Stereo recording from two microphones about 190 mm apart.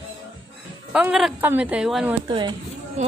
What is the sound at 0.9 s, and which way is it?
Speech, 5° right (ahead or behind).